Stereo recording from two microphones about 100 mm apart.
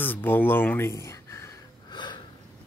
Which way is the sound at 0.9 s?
30° left (ahead or behind).